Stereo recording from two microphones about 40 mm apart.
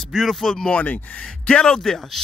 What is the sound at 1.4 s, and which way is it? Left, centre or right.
Speech, left.